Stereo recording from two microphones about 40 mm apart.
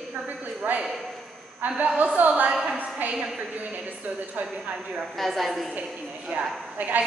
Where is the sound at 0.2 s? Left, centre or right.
Right.